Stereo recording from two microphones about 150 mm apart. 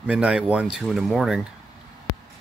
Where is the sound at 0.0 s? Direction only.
5° right (ahead or behind).